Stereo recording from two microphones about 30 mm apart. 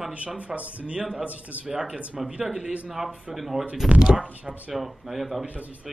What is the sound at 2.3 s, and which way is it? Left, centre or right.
Speech, right.